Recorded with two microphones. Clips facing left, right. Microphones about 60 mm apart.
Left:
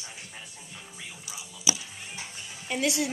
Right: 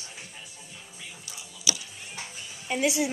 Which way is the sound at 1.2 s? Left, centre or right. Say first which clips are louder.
Left 1 dB; centre.